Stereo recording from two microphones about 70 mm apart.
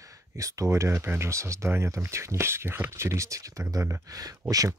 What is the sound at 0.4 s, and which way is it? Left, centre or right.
Speech, right.